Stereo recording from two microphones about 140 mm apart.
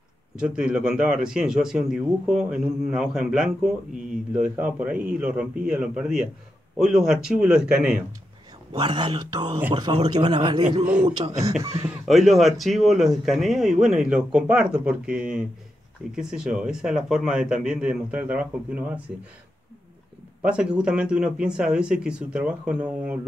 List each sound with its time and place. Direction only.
0.4 s speech: 5° right (ahead or behind)
8.7 s speech: 35° right (ahead or behind)
11.9 s speech: centre (ahead or behind)
20.4 s speech: 5° right (ahead or behind)